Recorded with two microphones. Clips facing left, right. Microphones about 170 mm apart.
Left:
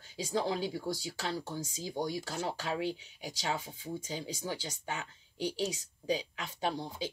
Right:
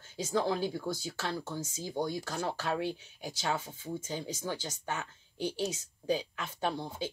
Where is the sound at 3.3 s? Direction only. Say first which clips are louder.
Right 2 dB; 15° left (ahead or behind).